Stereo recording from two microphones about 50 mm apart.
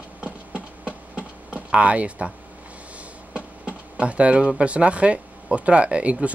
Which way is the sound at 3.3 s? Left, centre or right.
Right.